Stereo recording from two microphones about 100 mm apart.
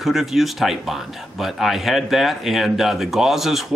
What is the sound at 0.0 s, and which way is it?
Speech, centre (ahead or behind).